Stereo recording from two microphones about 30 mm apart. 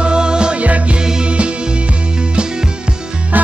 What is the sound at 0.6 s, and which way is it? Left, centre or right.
Music, right.